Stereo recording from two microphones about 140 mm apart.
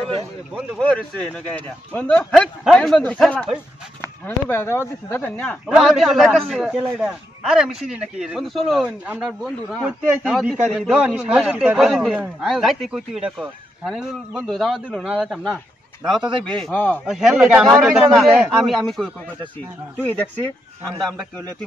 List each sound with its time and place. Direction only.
0.6 s speech: 5° left (ahead or behind)
5.7 s a man's voice: 5° right (ahead or behind)
17.0 s a man's voice: 5° right (ahead or behind)
20.0 s speech: 10° left (ahead or behind)